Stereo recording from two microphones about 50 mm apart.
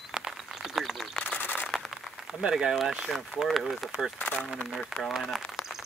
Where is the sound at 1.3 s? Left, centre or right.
Left.